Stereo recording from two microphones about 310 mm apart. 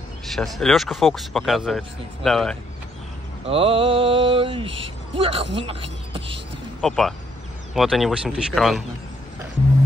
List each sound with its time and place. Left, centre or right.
0.3 s speech: centre
3.4 s speech: centre
6.8 s speech: centre